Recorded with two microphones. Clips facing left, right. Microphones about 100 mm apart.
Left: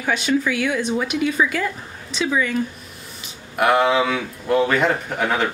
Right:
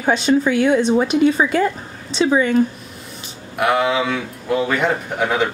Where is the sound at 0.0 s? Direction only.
30° right (ahead or behind).